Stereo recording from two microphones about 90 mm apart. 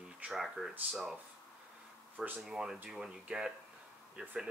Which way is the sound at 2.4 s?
5° right (ahead or behind).